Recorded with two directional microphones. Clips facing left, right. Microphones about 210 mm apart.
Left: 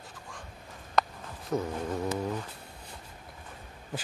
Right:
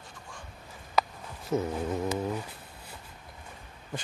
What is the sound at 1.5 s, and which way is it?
Speech, 5° right (ahead or behind).